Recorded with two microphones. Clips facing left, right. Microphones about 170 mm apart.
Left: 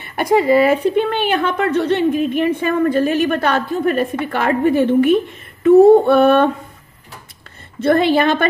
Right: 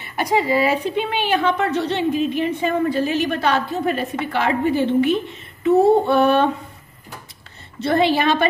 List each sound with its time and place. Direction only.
0.0 s a woman's voice: 55° left (ahead or behind)
7.8 s a woman's voice: 50° left (ahead or behind)